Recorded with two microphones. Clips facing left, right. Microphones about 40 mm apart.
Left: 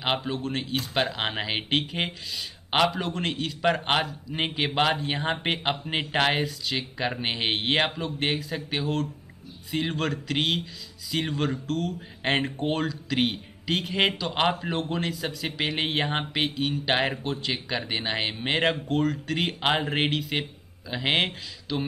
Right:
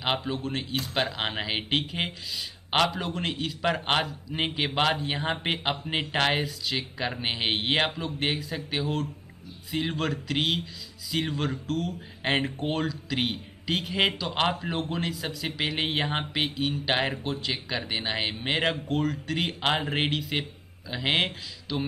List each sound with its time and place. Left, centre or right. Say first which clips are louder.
0.0 s speech: left 1 dB; centre